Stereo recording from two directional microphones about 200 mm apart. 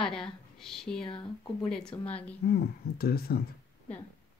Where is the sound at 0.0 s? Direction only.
5° left (ahead or behind).